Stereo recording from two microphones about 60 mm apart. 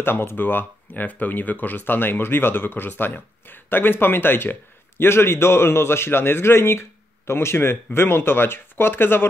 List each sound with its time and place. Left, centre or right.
0.0 s speech: left